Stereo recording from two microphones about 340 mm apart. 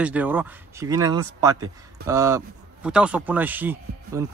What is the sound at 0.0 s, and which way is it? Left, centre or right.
A man's voice, centre.